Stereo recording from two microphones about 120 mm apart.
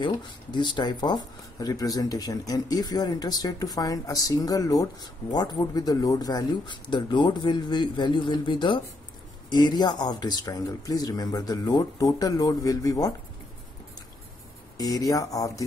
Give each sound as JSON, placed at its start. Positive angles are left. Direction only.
{"t": 0.0, "sound": "speech", "side_deg": 40}
{"t": 14.8, "sound": "speech", "side_deg": 30}